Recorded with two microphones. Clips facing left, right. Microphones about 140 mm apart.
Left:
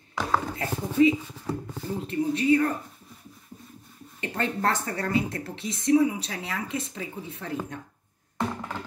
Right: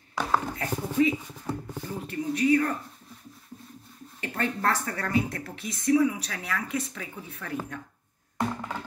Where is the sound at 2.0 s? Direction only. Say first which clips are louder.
Left 2 dB; 25° left (ahead or behind).